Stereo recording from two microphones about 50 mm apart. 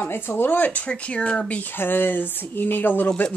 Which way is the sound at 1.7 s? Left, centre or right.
Left.